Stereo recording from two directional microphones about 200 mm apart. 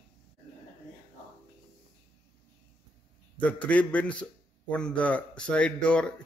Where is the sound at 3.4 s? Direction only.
5° left (ahead or behind).